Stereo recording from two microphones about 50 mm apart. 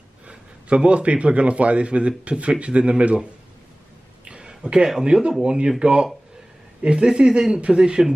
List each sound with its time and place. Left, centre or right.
0.3 s a man's voice: right
4.2 s a sound: right
5.0 s a man's voice: centre